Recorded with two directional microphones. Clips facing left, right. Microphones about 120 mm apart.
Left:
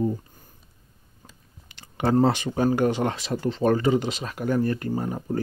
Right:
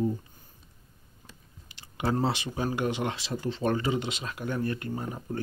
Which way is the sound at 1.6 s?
55° left (ahead or behind).